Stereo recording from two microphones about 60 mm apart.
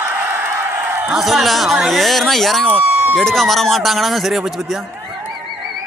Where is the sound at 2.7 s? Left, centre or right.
Right.